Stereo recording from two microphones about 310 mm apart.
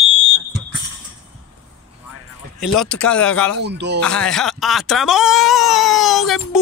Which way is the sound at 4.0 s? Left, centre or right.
Centre.